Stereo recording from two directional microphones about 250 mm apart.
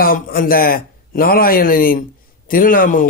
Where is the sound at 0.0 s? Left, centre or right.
Left.